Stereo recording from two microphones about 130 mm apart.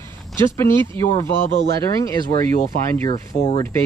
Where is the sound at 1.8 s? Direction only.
25° left (ahead or behind).